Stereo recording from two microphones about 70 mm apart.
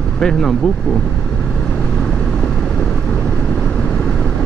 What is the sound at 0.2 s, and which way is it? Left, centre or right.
Speech, centre.